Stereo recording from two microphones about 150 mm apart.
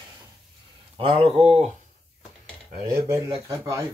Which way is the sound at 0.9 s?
40° right (ahead or behind).